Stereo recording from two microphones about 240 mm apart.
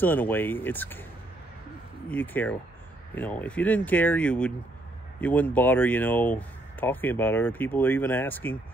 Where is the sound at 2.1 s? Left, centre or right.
Centre.